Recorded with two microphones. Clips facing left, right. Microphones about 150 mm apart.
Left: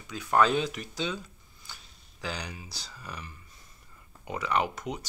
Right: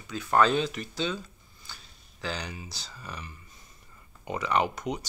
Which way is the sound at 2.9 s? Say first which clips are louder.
Even; centre (ahead or behind).